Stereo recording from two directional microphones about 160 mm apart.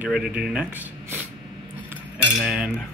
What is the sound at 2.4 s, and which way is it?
Speech, 5° right (ahead or behind).